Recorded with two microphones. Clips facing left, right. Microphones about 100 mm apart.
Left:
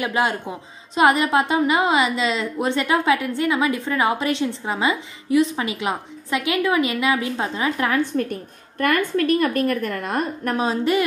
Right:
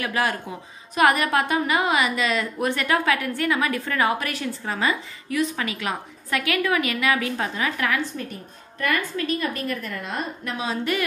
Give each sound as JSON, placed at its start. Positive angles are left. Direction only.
{"t": 0.0, "sound": "a woman's voice", "side_deg": 20}
{"t": 8.0, "sound": "a woman's voice", "side_deg": 55}